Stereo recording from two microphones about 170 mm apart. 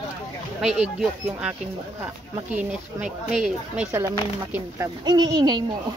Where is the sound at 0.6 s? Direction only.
Centre (ahead or behind).